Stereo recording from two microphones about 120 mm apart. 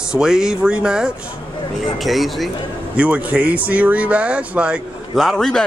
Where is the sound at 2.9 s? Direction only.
10° right (ahead or behind).